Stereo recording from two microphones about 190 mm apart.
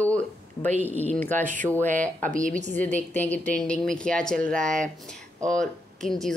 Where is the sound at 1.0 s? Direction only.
10° left (ahead or behind).